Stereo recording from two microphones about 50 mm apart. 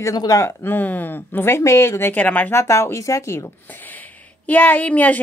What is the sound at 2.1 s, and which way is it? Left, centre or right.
Speech, left.